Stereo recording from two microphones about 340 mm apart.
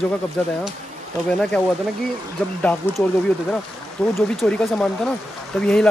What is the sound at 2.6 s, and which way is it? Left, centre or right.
Speech, centre.